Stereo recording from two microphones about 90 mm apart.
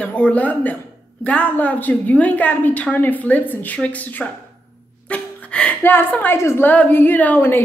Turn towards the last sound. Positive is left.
turn(degrees=20)  # may be behind; listen again after turning